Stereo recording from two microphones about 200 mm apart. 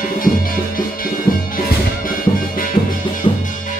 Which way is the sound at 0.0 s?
45° left (ahead or behind).